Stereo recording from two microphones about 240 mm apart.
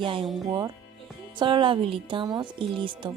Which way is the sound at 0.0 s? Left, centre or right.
Right.